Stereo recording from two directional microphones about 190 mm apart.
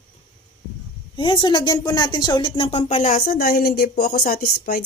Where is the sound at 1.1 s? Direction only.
25° left (ahead or behind).